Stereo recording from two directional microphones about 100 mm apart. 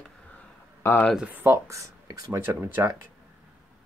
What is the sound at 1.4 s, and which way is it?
Speech, 30° right (ahead or behind).